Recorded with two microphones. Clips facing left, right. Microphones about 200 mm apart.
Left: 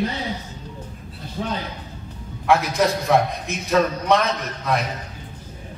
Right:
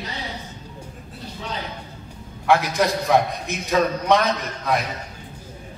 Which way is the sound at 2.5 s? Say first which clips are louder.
Even; centre (ahead or behind).